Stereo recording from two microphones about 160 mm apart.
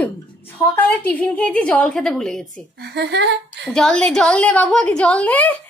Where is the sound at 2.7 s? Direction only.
90° right.